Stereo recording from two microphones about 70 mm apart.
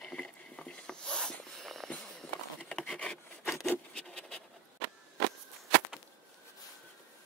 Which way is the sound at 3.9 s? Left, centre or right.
Centre.